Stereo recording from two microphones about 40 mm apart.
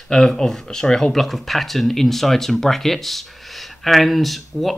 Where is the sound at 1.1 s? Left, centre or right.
Centre.